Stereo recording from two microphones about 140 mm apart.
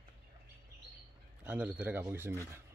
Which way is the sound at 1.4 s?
10° right (ahead or behind).